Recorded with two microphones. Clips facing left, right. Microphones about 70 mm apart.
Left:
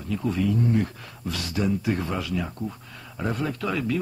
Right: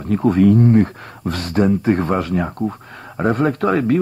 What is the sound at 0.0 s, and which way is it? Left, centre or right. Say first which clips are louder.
Speech: right 11 dB; right.